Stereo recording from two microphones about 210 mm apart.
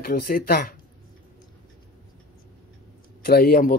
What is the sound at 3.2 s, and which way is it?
Speech, 45° left (ahead or behind).